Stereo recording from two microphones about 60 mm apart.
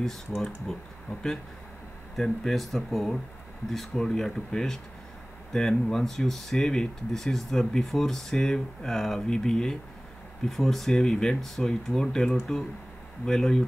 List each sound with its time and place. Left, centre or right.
0.7 s speech: centre
2.1 s speech: centre